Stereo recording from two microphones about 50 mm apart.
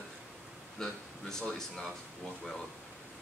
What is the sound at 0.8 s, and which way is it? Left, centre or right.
Speech, centre.